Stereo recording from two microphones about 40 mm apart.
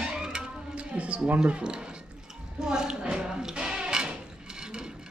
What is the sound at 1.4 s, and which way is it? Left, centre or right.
Speech, right.